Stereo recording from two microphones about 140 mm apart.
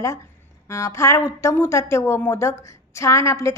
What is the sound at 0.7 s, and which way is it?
A woman's voice, 20° left (ahead or behind).